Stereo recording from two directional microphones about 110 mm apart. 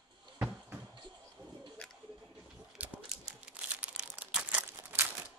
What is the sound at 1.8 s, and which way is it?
Music, 10° left (ahead or behind).